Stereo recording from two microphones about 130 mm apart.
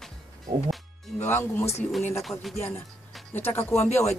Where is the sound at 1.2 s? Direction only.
15° left (ahead or behind).